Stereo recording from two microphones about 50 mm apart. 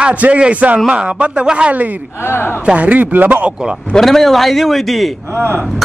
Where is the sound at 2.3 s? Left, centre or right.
Left.